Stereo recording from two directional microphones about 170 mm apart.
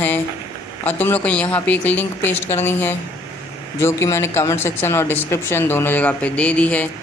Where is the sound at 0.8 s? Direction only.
10° left (ahead or behind).